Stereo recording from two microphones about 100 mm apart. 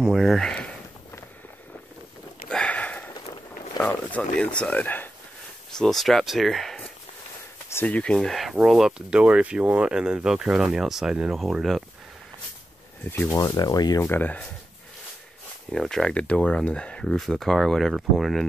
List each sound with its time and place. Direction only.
0.0 s speech: centre (ahead or behind)
2.5 s sniff: 10° left (ahead or behind)
3.8 s speech: 15° left (ahead or behind)
5.8 s speech: centre (ahead or behind)
7.7 s speech: 15° left (ahead or behind); by 11.8 s centre (ahead or behind)
13.1 s speech: 25° left (ahead or behind)
13.4 s speech: 40° left (ahead or behind)
14.0 s speech: 20° left (ahead or behind)
15.7 s speech: 5° left (ahead or behind)